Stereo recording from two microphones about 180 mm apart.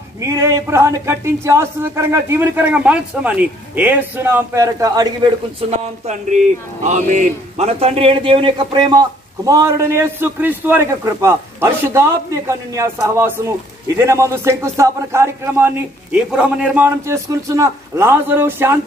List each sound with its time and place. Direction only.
0.2 s a man's voice: 15° right (ahead or behind)
6.0 s a man's voice: 40° right (ahead or behind); by 18.8 s 15° right (ahead or behind)